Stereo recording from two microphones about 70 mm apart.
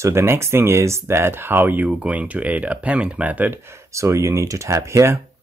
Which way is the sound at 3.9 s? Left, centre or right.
Right.